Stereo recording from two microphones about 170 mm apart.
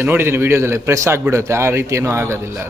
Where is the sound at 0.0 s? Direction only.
15° right (ahead or behind).